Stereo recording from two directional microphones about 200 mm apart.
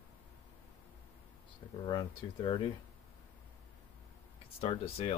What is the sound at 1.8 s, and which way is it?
Speech, 25° left (ahead or behind).